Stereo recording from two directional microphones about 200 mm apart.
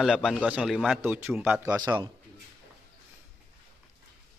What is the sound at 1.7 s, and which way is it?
Speech, 20° right (ahead or behind).